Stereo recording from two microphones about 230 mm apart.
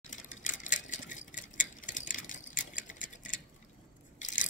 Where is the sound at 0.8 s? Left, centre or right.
Left.